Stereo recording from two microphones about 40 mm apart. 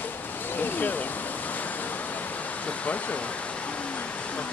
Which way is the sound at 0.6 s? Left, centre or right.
Left.